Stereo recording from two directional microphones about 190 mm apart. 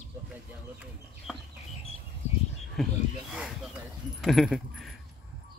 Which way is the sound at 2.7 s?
Centre (ahead or behind).